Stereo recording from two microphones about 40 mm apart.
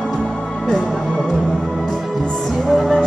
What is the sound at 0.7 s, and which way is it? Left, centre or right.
Speech, centre.